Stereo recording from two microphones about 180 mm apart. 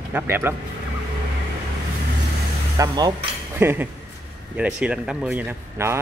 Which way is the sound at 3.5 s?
10° right (ahead or behind).